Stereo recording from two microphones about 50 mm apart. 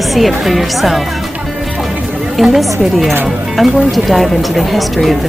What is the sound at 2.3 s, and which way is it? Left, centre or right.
Speech, centre.